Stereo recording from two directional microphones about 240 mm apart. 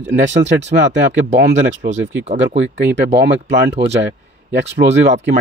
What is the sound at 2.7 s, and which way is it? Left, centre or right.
Speech, right.